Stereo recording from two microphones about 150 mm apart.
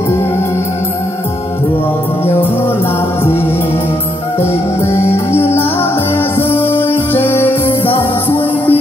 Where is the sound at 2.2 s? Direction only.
15° left (ahead or behind).